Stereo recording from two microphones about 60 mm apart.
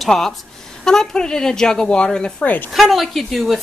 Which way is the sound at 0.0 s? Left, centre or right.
Centre.